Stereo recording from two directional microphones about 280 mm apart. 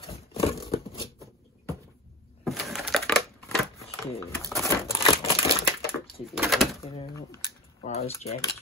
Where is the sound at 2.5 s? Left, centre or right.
Centre.